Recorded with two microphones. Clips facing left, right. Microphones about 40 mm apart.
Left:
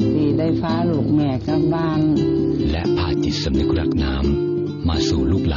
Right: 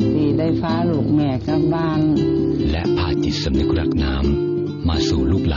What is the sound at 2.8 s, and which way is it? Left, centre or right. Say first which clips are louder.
Music: even; right.